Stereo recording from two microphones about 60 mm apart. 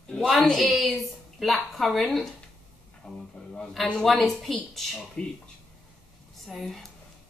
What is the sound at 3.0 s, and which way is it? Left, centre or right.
Speech, centre.